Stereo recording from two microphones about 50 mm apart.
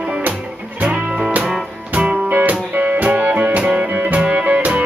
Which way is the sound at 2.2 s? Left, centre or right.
Right.